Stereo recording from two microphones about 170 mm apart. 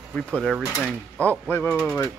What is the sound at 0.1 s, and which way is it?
Mechanisms, 5° left (ahead or behind).